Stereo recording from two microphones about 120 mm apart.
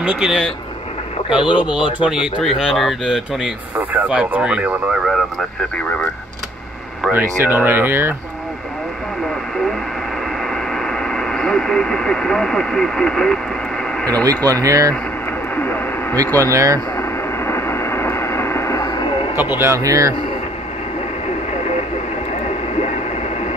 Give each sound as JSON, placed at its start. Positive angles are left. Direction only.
{"t": 0.0, "sound": "speech", "side_deg": -10}
{"t": 1.6, "sound": "speech", "side_deg": -10}
{"t": 3.7, "sound": "speech", "side_deg": -15}
{"t": 7.1, "sound": "speech", "side_deg": -15}
{"t": 10.9, "sound": "speech", "side_deg": 5}
{"t": 14.0, "sound": "speech", "side_deg": -30}
{"t": 15.5, "sound": "radio", "side_deg": 15}
{"t": 16.3, "sound": "speech", "side_deg": -25}
{"t": 17.5, "sound": "a sound", "side_deg": 20}
{"t": 19.3, "sound": "speech", "side_deg": -15}
{"t": 19.7, "sound": "speech", "side_deg": -30}